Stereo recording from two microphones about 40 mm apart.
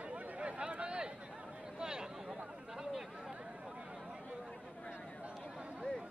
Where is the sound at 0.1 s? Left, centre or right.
Right.